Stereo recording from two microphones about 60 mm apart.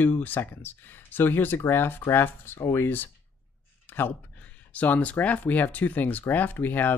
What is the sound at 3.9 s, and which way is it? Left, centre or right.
Speech, left.